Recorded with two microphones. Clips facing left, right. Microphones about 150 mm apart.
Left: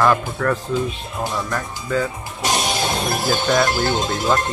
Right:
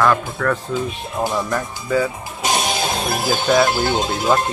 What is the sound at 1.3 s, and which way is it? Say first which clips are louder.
Speech: right 3 dB; 10° right (ahead or behind).